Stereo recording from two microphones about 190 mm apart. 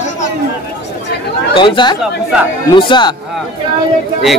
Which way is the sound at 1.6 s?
25° left (ahead or behind).